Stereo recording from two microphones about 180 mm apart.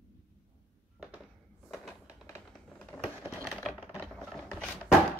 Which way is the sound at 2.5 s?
5° left (ahead or behind).